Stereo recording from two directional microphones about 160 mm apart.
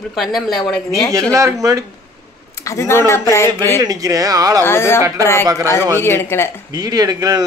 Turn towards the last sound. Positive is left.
turn(degrees=-20)  # may be behind; listen again after turning